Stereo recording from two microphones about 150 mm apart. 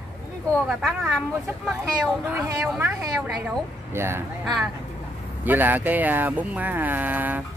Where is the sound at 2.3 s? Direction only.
15° right (ahead or behind).